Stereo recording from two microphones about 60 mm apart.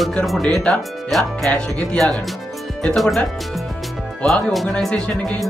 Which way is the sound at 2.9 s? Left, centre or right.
Centre.